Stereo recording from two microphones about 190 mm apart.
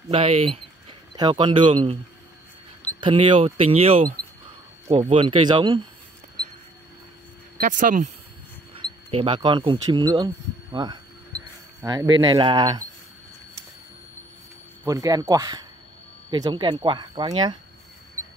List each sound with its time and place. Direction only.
0.1 s speech: 35° right (ahead or behind)
3.0 s speech: 25° right (ahead or behind)
7.5 s speech: 45° right (ahead or behind)
8.8 s speech: 30° right (ahead or behind)
14.9 s speech: 20° right (ahead or behind)